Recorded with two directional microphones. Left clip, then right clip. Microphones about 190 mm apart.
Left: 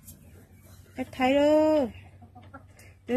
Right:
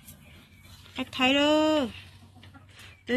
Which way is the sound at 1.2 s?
50° right (ahead or behind).